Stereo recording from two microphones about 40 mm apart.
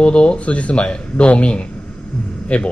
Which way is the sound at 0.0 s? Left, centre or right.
Left.